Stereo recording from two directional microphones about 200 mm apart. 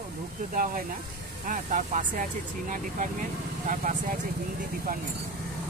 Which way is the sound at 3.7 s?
40° right (ahead or behind).